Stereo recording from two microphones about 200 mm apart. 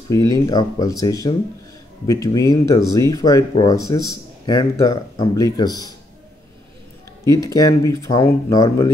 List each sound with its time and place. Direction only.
0.1 s speech: 20° left (ahead or behind)
7.2 s speech: 20° left (ahead or behind)